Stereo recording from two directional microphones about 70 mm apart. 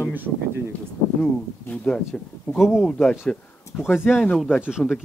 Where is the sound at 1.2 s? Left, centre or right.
Centre.